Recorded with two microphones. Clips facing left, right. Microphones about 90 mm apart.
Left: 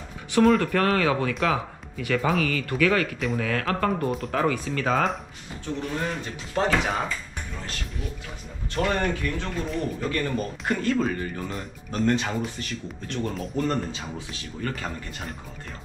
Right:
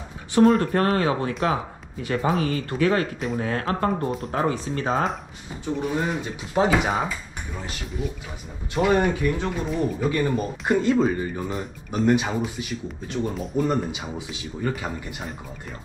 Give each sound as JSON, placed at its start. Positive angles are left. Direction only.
{"t": 0.6, "sound": "speech", "side_deg": -30}
{"t": 5.7, "sound": "speech", "side_deg": -10}